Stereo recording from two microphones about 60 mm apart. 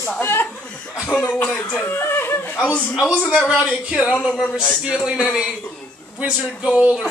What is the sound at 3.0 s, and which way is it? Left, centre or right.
A man's voice, centre.